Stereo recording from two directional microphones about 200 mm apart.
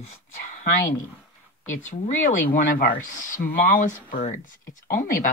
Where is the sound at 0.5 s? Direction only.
40° left (ahead or behind).